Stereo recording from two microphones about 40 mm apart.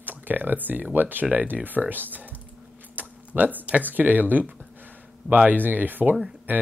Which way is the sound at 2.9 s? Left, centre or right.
Right.